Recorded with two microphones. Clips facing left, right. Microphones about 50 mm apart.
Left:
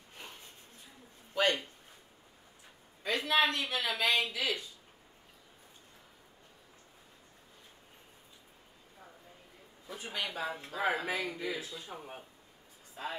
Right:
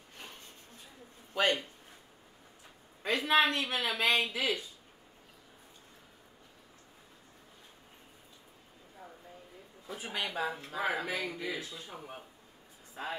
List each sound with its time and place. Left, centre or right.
1.3 s a sound: centre
3.3 s speech: right
9.8 s a man's voice: centre
12.9 s speech: right